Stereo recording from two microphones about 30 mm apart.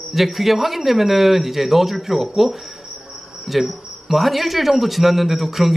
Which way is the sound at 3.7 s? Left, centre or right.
Centre.